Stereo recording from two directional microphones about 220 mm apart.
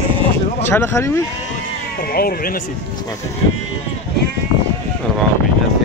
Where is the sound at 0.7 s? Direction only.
10° left (ahead or behind).